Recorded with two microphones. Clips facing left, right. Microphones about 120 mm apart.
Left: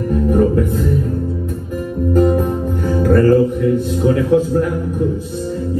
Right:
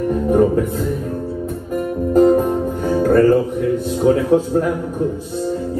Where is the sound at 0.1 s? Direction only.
30° right (ahead or behind).